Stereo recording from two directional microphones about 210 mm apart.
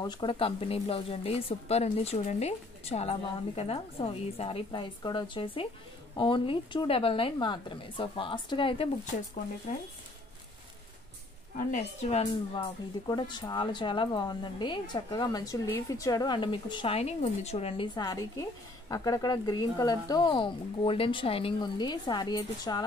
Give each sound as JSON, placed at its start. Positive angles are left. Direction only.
{"t": 0.0, "sound": "speech", "side_deg": 20}
{"t": 11.5, "sound": "a woman's voice", "side_deg": 35}
{"t": 12.5, "sound": "speech", "side_deg": 20}